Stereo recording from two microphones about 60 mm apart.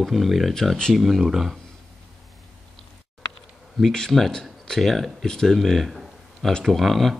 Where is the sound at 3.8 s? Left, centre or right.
Centre.